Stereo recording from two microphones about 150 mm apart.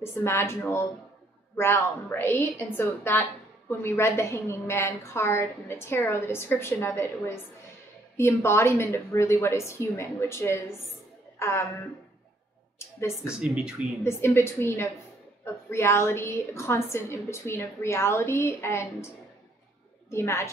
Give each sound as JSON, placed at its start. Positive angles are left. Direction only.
{"t": 0.0, "sound": "a woman's voice", "side_deg": 15}
{"t": 12.7, "sound": "a woman's voice", "side_deg": 20}
{"t": 13.4, "sound": "speech", "side_deg": -5}
{"t": 14.0, "sound": "a woman's voice", "side_deg": 15}
{"t": 20.1, "sound": "a woman's voice", "side_deg": 20}